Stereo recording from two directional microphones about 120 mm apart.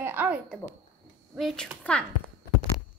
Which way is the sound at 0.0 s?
15° right (ahead or behind).